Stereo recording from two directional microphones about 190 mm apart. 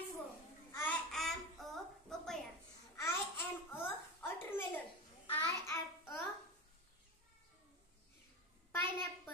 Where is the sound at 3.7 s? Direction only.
10° left (ahead or behind).